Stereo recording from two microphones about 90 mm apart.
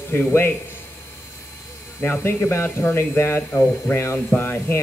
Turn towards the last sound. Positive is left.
turn(degrees=25)  # may be behind; listen again after turning